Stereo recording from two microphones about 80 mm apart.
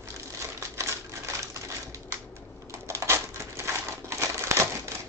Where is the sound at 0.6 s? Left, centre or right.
Right.